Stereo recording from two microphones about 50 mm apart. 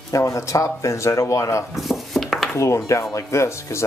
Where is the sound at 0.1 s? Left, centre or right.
Left.